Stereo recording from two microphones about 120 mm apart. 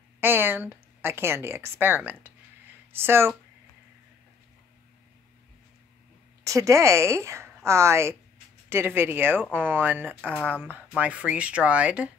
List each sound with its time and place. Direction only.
0.2 s a woman's voice: 20° right (ahead or behind)
6.4 s a woman's voice: 25° right (ahead or behind); by 12.1 s 10° right (ahead or behind)